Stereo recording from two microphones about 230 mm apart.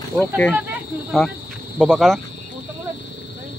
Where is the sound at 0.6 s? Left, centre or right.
Centre.